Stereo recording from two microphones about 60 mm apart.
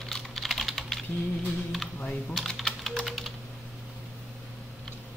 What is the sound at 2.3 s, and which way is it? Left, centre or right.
Typing, centre.